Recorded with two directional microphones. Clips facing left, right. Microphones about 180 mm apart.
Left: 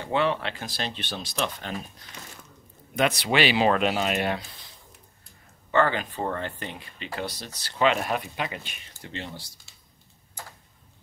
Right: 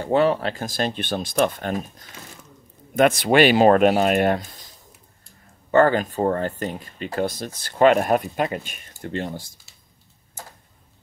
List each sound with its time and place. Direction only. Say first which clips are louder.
0.0 s speech: right 6 dB; 40° right (ahead or behind)
5.7 s speech: right 7 dB; 45° right (ahead or behind)